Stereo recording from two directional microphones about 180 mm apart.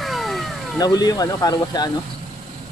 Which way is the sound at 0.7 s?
20° left (ahead or behind).